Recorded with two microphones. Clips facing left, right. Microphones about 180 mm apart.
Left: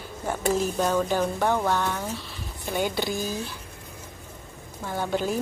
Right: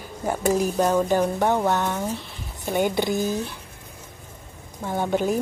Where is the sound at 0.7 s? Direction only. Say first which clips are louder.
Right 4 dB; 10° right (ahead or behind).